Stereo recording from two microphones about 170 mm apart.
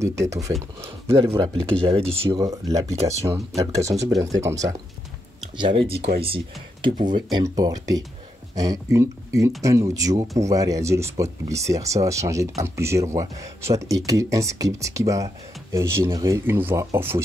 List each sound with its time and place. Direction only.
0.0 s speech: 20° right (ahead or behind)
1.0 s speech: 35° right (ahead or behind)
2.2 s speech: 20° right (ahead or behind)
5.8 s speech: 35° right (ahead or behind); by 17.2 s 15° right (ahead or behind)